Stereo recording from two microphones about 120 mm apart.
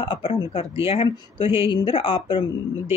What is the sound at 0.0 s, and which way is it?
Speech, 50° left (ahead or behind).